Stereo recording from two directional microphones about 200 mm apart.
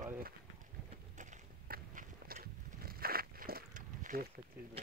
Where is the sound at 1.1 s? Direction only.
40° right (ahead or behind).